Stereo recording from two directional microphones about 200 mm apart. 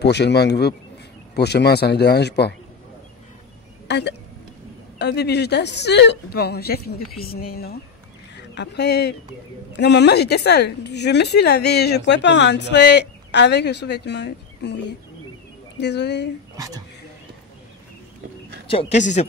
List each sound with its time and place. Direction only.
0.0 s a woman's voice: 55° left (ahead or behind)
3.8 s a woman's voice: 60° left (ahead or behind)
16.5 s speech: 20° right (ahead or behind)
18.7 s speech: 30° left (ahead or behind)